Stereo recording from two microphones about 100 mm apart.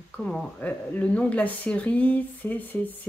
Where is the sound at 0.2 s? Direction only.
5° left (ahead or behind).